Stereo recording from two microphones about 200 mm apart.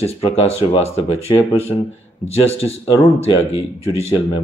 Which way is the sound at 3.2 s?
30° left (ahead or behind).